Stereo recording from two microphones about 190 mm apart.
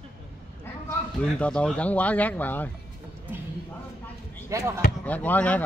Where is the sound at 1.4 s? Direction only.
5° left (ahead or behind).